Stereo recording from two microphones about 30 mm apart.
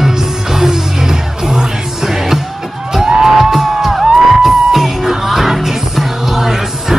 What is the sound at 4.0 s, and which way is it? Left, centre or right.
Music, right.